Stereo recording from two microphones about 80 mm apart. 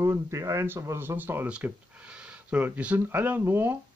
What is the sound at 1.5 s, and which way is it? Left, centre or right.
Speech, centre.